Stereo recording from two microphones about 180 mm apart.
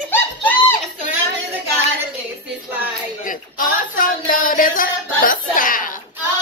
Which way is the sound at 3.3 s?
50° left (ahead or behind).